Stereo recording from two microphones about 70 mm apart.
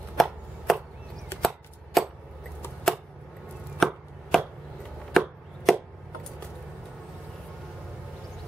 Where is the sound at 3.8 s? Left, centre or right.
Centre.